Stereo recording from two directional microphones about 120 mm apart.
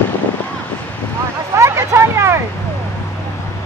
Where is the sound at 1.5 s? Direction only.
25° right (ahead or behind).